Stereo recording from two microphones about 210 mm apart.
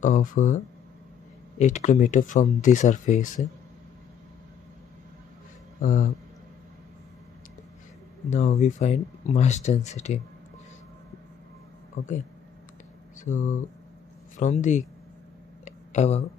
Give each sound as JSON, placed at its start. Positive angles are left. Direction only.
{"t": 0.0, "sound": "speech", "side_deg": 40}
{"t": 1.6, "sound": "speech", "side_deg": 35}
{"t": 5.8, "sound": "speech", "side_deg": 35}
{"t": 8.3, "sound": "speech", "side_deg": 35}
{"t": 12.0, "sound": "speech", "side_deg": 35}
{"t": 13.2, "sound": "speech", "side_deg": 35}
{"t": 15.6, "sound": "a sound", "side_deg": 35}